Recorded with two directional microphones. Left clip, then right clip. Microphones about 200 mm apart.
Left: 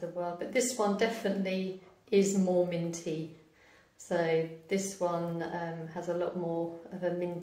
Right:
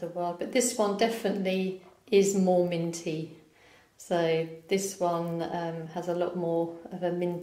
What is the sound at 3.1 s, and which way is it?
A woman's voice, 30° right (ahead or behind).